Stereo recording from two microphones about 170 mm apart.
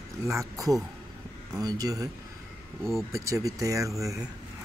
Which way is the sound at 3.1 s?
20° right (ahead or behind).